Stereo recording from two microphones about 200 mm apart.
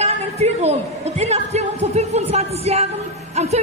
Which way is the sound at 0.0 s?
30° right (ahead or behind).